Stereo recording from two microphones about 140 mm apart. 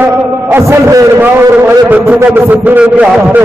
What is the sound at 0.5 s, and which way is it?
A man's voice, 20° right (ahead or behind).